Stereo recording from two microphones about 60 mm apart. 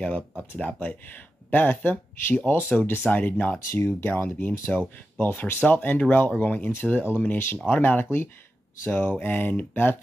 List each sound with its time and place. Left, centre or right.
0.4 s speech: centre
3.5 s speech: left
4.1 s speech: left